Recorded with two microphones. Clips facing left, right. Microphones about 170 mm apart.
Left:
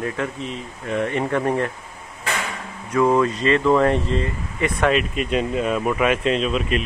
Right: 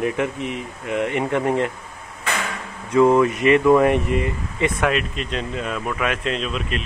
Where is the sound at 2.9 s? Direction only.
20° right (ahead or behind).